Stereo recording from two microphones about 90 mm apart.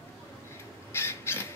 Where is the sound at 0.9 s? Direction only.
30° left (ahead or behind).